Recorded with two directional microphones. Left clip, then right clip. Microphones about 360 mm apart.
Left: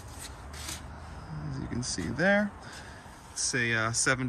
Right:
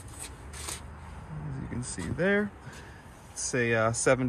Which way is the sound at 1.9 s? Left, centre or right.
Centre.